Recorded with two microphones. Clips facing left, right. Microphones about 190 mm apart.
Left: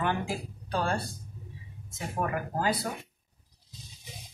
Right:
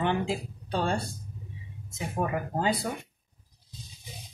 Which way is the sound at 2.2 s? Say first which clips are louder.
Right 1 dB; 20° right (ahead or behind).